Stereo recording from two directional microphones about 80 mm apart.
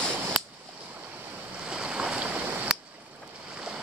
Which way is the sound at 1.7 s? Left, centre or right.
Centre.